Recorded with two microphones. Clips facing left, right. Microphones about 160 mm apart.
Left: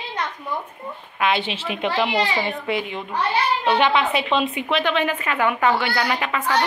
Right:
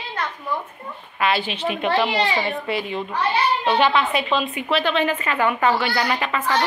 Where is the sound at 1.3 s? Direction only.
20° left (ahead or behind).